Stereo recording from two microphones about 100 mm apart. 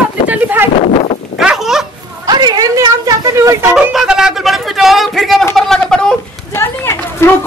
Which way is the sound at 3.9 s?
5° right (ahead or behind).